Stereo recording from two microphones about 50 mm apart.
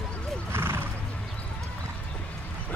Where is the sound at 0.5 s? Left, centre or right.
Right.